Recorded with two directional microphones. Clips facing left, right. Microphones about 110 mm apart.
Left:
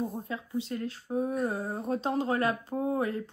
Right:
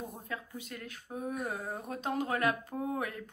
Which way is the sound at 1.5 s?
15° left (ahead or behind).